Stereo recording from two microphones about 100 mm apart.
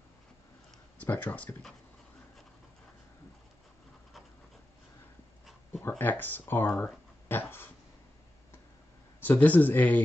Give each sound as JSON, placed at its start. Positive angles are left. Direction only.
{"t": 1.0, "sound": "speech", "side_deg": 15}
{"t": 5.7, "sound": "speech", "side_deg": 25}
{"t": 9.2, "sound": "speech", "side_deg": 15}